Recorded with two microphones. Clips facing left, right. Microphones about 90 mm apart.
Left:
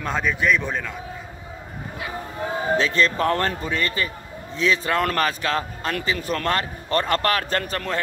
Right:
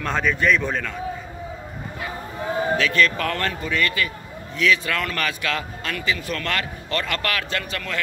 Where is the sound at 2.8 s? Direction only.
30° left (ahead or behind).